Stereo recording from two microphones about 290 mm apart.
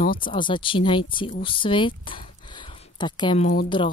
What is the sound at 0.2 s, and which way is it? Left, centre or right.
Speech, centre.